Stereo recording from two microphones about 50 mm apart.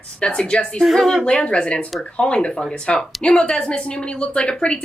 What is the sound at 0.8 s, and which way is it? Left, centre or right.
Speech, centre.